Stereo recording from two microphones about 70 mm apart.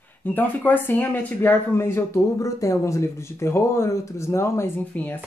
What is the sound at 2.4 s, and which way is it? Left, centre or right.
Speech, left.